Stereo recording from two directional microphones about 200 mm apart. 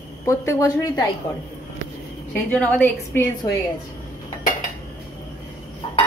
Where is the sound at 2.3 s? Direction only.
5° left (ahead or behind).